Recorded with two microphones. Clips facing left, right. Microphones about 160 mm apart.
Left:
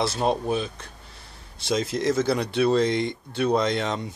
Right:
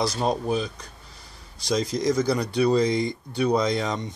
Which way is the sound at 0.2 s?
Centre (ahead or behind).